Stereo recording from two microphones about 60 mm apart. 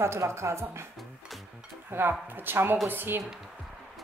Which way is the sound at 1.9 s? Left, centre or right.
Right.